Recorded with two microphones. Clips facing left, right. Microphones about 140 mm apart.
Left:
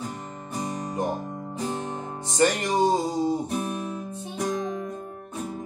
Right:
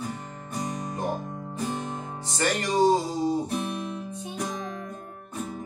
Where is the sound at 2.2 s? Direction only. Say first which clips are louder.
Left 5 dB; 15° left (ahead or behind).